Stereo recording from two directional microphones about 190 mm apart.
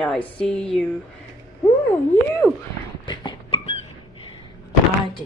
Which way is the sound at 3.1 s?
25° left (ahead or behind).